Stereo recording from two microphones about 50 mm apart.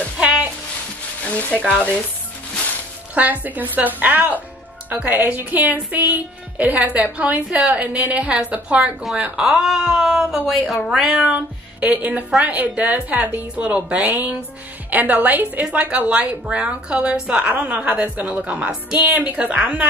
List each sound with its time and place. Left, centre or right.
1.2 s sizzle: left
3.2 s a woman's voice: right
9.4 s speech: centre
10.3 s speech: centre
11.3 s a woman's voice: right
14.0 s a woman's voice: right